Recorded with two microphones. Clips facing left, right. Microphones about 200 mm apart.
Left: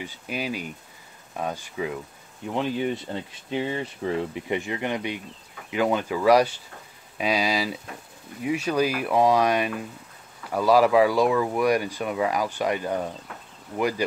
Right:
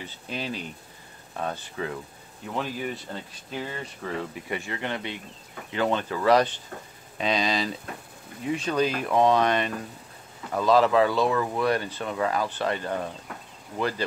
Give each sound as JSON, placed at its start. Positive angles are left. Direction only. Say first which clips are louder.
{"t": 0.0, "sound": "speech", "louder": "left 3 dB", "side_deg": 10}
{"t": 2.5, "sound": "speech", "louder": "left 5 dB", "side_deg": 25}